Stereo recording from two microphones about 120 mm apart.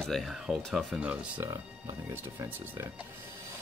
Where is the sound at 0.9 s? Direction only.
10° right (ahead or behind).